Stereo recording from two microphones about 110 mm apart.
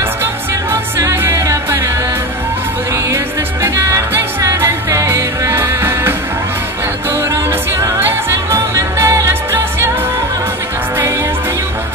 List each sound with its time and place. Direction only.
0.2 s music: 25° right (ahead or behind)
3.6 s music: 25° right (ahead or behind)
8.0 s music: 25° right (ahead or behind)